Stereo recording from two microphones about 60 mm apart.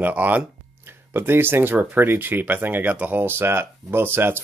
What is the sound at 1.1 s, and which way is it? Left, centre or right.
Speech, right.